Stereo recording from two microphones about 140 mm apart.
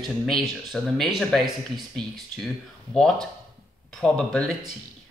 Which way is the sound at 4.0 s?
5° left (ahead or behind).